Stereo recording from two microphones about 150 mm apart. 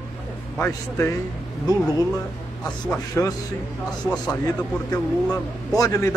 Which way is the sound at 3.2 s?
15° left (ahead or behind).